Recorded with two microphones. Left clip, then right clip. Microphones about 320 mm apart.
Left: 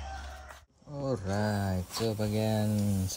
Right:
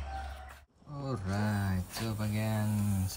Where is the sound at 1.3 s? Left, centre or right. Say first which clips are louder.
Left 4 dB; centre.